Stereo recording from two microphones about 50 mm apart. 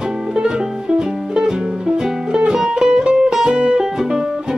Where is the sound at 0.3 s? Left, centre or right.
Centre.